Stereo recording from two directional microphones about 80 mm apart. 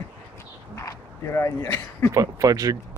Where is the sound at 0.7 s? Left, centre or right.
Left.